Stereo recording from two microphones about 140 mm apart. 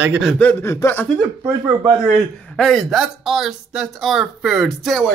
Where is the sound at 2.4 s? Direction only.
5° left (ahead or behind).